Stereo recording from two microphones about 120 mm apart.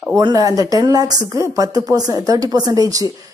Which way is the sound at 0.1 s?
30° right (ahead or behind).